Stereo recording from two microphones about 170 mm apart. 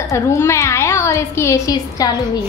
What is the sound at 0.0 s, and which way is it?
A woman's voice, 15° left (ahead or behind).